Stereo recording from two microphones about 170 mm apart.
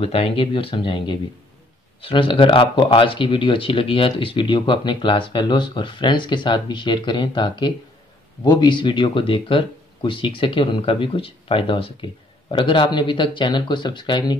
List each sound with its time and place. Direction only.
0.0 s speech: 35° left (ahead or behind)